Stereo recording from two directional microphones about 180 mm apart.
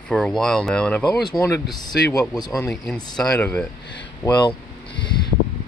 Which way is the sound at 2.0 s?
20° left (ahead or behind).